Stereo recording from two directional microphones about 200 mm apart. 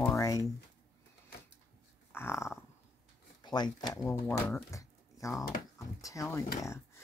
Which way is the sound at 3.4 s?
20° left (ahead or behind).